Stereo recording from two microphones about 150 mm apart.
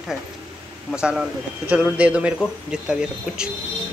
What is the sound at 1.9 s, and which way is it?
Speech, 10° right (ahead or behind).